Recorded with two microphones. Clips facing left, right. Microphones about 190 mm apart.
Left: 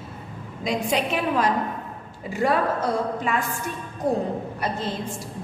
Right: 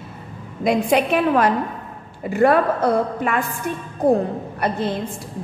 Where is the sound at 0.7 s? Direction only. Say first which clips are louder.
Right 7 dB; 60° right (ahead or behind).